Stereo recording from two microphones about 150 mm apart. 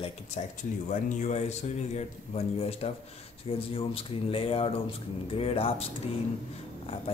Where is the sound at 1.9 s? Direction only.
45° left (ahead or behind).